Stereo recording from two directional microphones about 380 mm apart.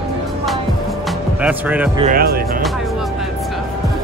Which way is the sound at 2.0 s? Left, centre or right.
Right.